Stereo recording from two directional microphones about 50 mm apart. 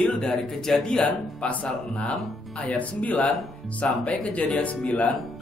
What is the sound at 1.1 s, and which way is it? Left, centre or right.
Speech, left.